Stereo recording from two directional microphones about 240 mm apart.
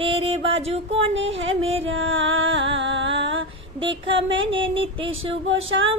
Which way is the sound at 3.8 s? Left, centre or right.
Right.